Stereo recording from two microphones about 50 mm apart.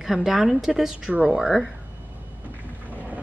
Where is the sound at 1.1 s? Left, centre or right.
Right.